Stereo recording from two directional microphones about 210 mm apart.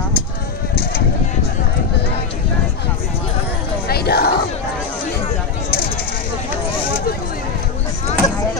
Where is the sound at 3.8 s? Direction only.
50° left (ahead or behind).